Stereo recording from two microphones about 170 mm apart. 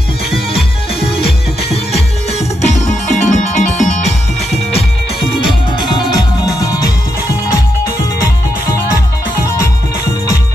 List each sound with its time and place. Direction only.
1.2 s music: 35° left (ahead or behind)
5.5 s music: 25° left (ahead or behind)